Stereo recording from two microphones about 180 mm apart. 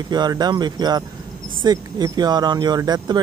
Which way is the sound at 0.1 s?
25° right (ahead or behind).